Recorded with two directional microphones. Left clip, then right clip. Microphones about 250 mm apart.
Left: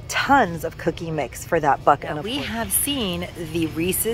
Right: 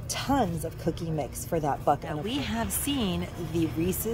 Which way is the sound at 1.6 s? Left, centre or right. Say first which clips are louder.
Left 9 dB; centre.